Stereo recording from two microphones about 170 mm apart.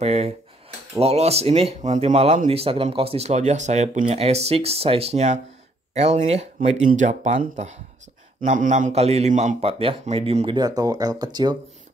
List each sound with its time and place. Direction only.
0.0 s speech: 35° right (ahead or behind)